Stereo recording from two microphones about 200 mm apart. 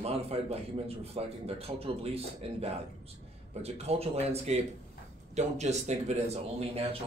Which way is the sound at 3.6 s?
30° right (ahead or behind).